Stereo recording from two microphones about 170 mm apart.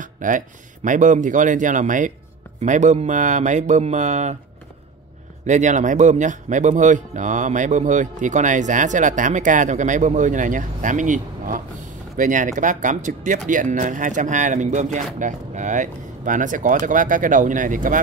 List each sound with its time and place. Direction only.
0.0 s a sound: 50° right (ahead or behind)
0.8 s speech: 50° right (ahead or behind)
5.5 s speech: 45° right (ahead or behind)